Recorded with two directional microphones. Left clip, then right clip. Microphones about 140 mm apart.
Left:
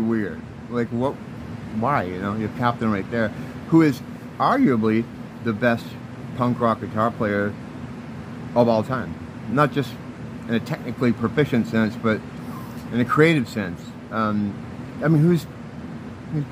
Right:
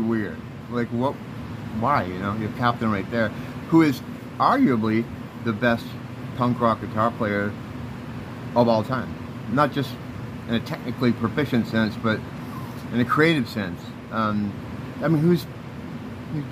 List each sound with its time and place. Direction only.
0.7 s speech: 20° left (ahead or behind)
8.5 s speech: 15° left (ahead or behind)